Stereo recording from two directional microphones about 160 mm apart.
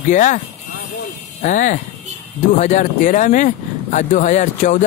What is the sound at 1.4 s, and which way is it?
Speech, 50° left (ahead or behind).